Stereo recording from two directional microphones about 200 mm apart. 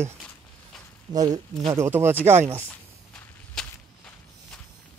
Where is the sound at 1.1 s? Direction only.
20° right (ahead or behind).